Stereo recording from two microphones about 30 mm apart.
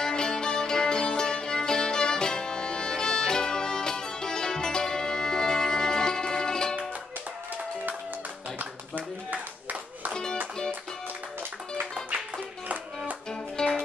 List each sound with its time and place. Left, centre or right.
0.0 s music: left
8.5 s clapping: right
13.3 s music: centre